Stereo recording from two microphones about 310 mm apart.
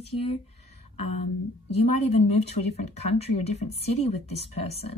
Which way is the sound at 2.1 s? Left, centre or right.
Centre.